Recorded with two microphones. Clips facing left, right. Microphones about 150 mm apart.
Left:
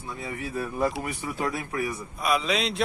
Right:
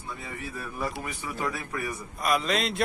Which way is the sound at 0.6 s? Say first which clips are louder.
Left 7 dB; 30° left (ahead or behind).